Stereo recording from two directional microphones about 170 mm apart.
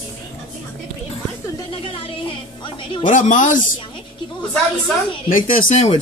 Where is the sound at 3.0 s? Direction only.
50° left (ahead or behind).